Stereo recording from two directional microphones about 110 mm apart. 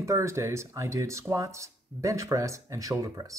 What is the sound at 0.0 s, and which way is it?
Speech, 25° right (ahead or behind).